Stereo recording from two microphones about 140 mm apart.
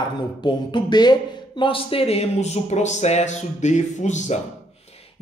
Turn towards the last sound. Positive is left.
turn(degrees=55)  # may be behind; listen again after turning